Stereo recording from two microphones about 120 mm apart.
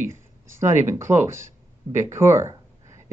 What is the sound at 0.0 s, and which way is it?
Speech, 20° right (ahead or behind).